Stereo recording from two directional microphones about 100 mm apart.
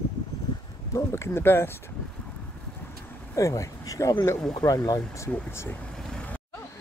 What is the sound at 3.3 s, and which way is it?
Speech, 30° left (ahead or behind).